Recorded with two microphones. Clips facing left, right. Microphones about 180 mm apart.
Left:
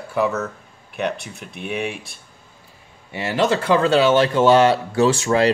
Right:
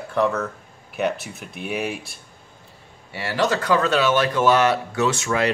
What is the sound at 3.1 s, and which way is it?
Speech, 20° left (ahead or behind).